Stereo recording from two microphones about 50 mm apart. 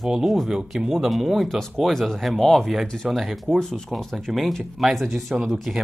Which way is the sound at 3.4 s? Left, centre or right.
Centre.